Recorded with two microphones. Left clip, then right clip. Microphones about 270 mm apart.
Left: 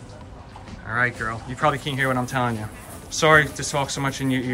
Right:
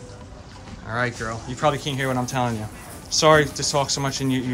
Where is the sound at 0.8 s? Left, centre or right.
Centre.